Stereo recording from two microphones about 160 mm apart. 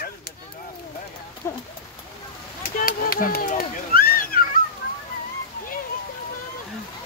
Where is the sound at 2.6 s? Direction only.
65° left (ahead or behind).